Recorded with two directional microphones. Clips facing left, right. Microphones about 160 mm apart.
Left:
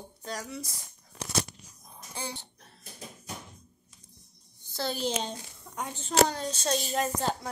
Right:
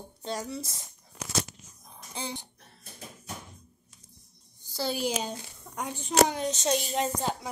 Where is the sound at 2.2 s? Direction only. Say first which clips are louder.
Right 2 dB; 20° right (ahead or behind).